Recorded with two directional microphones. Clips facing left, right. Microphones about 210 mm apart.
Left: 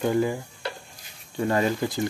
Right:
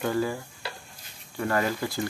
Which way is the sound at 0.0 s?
20° left (ahead or behind).